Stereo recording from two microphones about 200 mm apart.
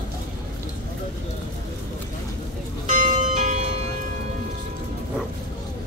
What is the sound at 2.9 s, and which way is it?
Church bell, 35° right (ahead or behind).